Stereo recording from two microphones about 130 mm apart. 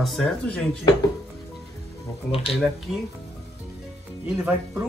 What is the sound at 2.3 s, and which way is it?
Speech, 45° left (ahead or behind).